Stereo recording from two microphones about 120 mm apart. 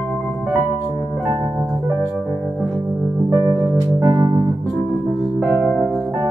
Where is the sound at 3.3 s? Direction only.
20° right (ahead or behind).